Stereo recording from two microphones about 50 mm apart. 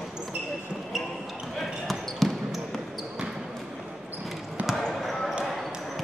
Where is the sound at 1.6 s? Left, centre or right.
Centre.